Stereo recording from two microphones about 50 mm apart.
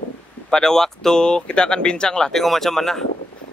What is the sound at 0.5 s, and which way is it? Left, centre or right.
Speech, centre.